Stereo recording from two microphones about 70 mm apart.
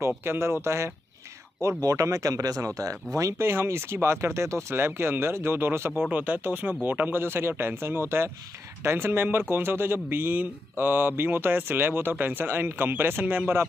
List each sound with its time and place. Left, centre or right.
0.2 s speech: right